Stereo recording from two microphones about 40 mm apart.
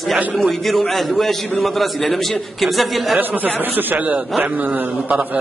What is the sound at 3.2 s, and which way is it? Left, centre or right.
Speech, right.